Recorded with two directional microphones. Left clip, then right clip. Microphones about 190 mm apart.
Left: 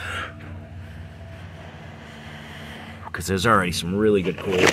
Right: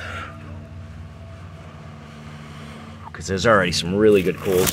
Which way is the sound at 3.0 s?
65° left (ahead or behind).